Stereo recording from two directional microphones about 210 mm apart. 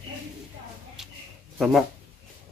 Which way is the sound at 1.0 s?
Centre (ahead or behind).